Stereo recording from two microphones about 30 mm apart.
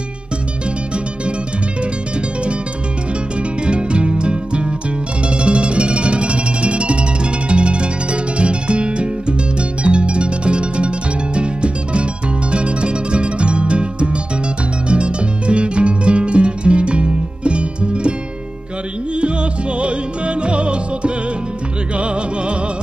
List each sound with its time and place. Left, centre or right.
3.6 s music: right
19.8 s music: right